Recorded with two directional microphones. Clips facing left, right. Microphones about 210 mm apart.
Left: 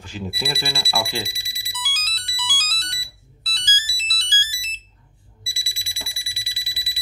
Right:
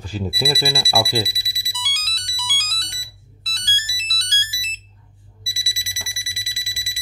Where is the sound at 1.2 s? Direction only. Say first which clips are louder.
Right 3 dB; 65° right (ahead or behind).